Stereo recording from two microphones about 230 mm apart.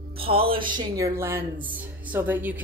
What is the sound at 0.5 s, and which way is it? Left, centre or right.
Speech, right.